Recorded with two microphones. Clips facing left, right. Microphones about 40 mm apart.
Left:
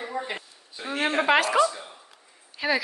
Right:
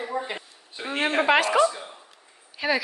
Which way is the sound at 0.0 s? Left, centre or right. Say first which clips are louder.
Right 2 dB; centre.